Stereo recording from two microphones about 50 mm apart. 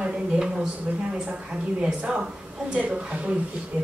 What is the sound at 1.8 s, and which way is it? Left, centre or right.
A woman's voice, right.